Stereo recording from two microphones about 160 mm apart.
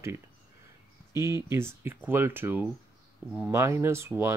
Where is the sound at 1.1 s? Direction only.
15° right (ahead or behind).